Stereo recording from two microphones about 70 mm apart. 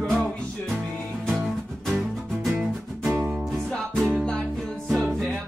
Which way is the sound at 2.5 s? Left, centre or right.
Right.